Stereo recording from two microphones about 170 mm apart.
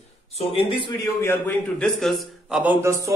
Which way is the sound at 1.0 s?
15° left (ahead or behind).